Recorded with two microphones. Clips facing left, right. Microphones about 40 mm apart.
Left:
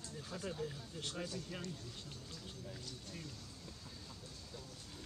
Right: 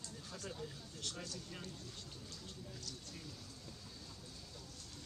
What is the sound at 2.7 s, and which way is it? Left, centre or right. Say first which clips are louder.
Speech: left 1 dB; centre.